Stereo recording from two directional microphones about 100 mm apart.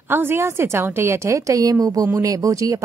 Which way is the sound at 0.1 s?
25° right (ahead or behind).